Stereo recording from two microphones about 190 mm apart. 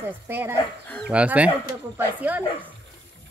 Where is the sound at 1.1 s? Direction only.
5° right (ahead or behind).